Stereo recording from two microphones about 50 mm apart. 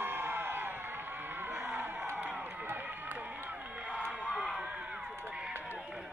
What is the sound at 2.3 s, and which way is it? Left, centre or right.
Run, right.